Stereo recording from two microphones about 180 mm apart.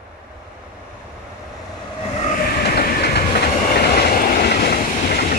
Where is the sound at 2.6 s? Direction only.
65° left (ahead or behind).